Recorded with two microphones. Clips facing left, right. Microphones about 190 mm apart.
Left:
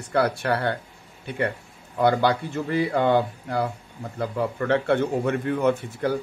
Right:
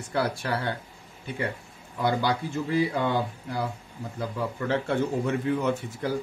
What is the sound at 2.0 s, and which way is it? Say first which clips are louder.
Speech: left 5 dB; 60° left (ahead or behind).